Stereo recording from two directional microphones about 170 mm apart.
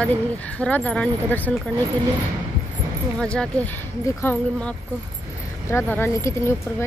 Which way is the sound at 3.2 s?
5° left (ahead or behind).